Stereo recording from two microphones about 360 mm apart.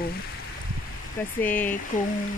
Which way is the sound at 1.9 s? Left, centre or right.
Left.